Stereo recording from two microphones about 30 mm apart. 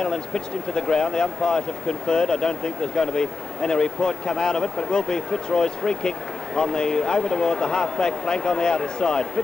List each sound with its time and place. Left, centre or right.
0.0 s speech: left